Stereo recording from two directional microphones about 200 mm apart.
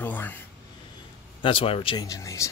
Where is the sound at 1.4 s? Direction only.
25° left (ahead or behind).